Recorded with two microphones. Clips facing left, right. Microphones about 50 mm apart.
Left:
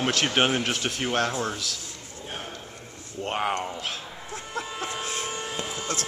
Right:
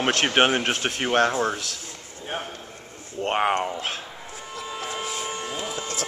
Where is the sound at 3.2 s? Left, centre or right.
Right.